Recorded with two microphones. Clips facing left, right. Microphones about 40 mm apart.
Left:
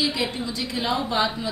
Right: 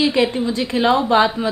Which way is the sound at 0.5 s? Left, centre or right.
Right.